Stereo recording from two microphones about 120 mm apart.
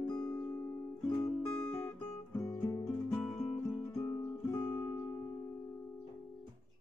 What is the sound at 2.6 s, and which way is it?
Music, 30° left (ahead or behind).